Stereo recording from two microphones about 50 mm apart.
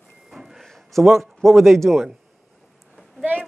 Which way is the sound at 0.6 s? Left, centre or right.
Centre.